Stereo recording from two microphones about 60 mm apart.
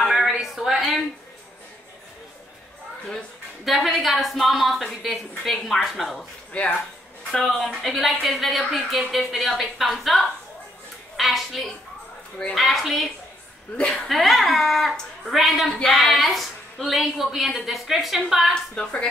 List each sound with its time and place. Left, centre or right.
0.4 s a sound: centre
3.6 s a woman's voice: centre
6.5 s speech: left
7.2 s a woman's voice: centre
18.5 s a woman's voice: centre